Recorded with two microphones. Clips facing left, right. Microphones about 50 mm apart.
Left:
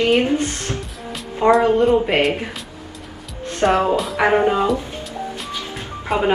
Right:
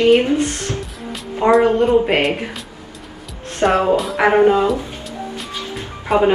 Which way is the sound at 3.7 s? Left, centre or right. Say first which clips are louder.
Right 2 dB; right.